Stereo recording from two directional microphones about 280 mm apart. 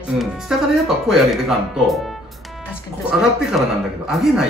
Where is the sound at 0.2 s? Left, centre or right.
Centre.